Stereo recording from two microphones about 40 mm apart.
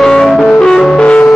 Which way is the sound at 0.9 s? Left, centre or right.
Left.